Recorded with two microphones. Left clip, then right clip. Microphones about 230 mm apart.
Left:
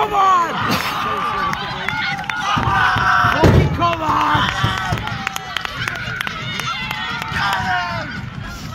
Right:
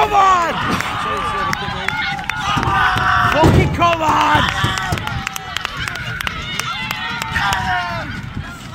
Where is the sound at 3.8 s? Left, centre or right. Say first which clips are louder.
Right 5 dB; right.